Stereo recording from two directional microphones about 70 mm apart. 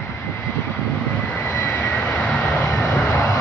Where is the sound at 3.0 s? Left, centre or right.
Left.